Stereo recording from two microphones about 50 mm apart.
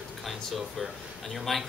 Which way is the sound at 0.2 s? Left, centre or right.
Centre.